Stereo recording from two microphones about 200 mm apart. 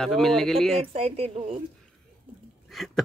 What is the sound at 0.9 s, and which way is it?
Speech, 30° right (ahead or behind).